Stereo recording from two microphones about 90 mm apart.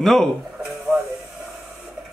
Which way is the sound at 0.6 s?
5° right (ahead or behind).